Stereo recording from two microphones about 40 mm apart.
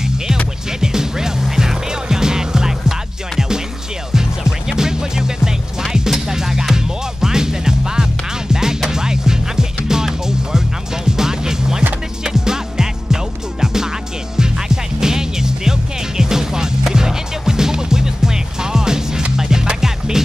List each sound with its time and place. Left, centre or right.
0.7 s music: centre